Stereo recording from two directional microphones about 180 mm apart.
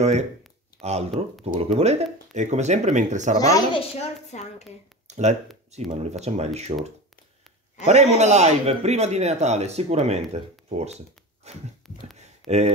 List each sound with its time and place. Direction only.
0.7 s speech: 35° right (ahead or behind)
3.3 s speech: 20° left (ahead or behind)
3.9 s speech: 40° left (ahead or behind)
5.0 s a sound: 40° right (ahead or behind)
5.7 s speech: 40° right (ahead or behind)
11.8 s a sound: centre (ahead or behind)
12.2 s speech: 40° right (ahead or behind)